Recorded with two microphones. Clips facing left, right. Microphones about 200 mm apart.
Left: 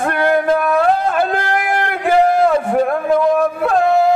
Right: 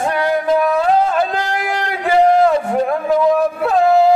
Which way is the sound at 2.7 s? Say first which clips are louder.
Left 1 dB; centre (ahead or behind).